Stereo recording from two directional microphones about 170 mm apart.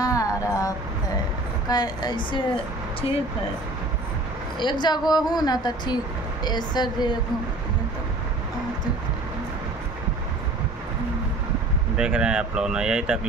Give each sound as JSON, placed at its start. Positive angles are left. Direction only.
{"t": 0.0, "sound": "vehicle", "side_deg": 20}
{"t": 1.7, "sound": "a woman's voice", "side_deg": 25}
{"t": 4.6, "sound": "a woman's voice", "side_deg": 25}
{"t": 12.0, "sound": "speech", "side_deg": -5}